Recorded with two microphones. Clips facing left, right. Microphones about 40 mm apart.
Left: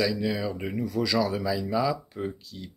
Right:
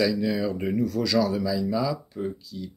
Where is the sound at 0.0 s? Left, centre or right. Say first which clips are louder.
Right 3 dB; centre.